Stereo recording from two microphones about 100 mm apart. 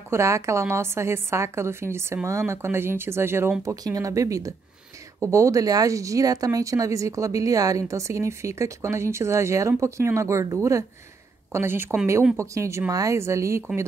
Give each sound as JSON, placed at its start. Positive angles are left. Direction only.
{"t": 0.1, "sound": "a woman's voice", "side_deg": -30}
{"t": 3.6, "sound": "a woman's voice", "side_deg": -35}